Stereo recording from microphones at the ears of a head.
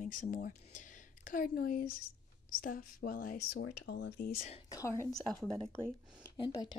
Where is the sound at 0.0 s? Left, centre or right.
Left.